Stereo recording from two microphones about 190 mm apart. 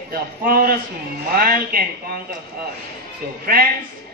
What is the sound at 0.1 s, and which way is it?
A man's voice, 50° right (ahead or behind).